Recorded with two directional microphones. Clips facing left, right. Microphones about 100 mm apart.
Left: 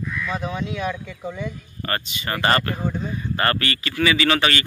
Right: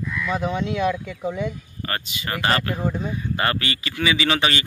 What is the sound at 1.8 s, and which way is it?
Speech, 5° right (ahead or behind).